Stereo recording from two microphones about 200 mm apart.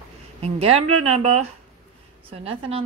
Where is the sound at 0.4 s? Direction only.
30° right (ahead or behind).